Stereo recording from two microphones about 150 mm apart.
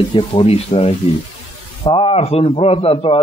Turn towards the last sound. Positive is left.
turn(degrees=35)  # may be behind; listen again after turning